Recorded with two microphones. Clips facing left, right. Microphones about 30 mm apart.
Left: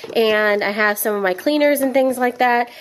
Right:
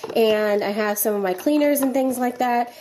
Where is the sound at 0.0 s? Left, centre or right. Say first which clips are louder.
Left 2 dB; left.